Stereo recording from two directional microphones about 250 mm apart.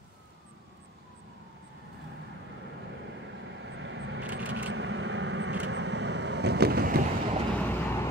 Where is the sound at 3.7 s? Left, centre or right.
Right.